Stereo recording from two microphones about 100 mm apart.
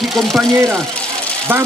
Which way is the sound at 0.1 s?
Centre (ahead or behind).